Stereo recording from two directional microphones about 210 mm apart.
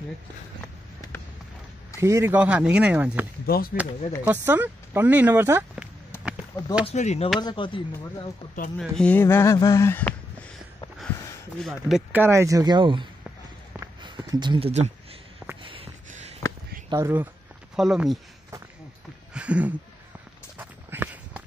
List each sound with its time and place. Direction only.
2.0 s speech: 15° right (ahead or behind)
3.4 s speech: 45° left (ahead or behind)
4.2 s speech: 10° right (ahead or behind)
6.1 s a sound: 10° left (ahead or behind)
6.9 s speech: 30° left (ahead or behind)
8.7 s speech: 5° left (ahead or behind)
11.5 s speech: centre (ahead or behind); by 13.1 s 20° right (ahead or behind)
13.7 s a sound: 20° right (ahead or behind)
16.4 s a sound: 10° left (ahead or behind)
16.9 s speech: 10° right (ahead or behind)
19.3 s speech: 5° right (ahead or behind)
20.5 s walk: 10° right (ahead or behind)